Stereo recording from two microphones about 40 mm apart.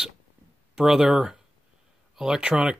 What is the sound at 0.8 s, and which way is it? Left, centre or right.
Speech, centre.